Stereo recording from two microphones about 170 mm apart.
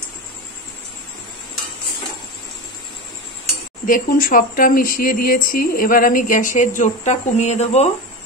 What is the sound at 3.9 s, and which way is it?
A woman's voice, 60° left (ahead or behind).